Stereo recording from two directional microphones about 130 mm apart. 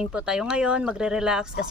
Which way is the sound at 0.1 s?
5° right (ahead or behind).